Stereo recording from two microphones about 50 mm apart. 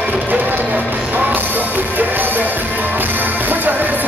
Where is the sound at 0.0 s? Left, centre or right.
Right.